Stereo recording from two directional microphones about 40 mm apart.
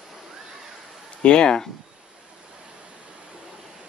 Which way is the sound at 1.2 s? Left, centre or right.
Left.